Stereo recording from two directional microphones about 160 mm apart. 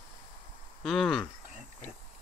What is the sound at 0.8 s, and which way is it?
Speech, centre (ahead or behind).